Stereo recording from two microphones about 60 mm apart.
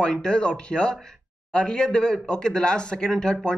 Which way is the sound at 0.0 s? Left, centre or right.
Centre.